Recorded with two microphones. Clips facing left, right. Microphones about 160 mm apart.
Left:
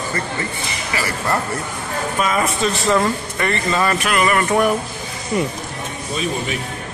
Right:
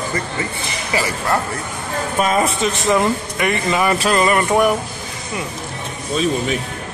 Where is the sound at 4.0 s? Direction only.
30° right (ahead or behind).